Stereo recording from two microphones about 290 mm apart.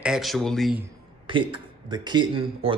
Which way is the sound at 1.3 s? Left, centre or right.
Centre.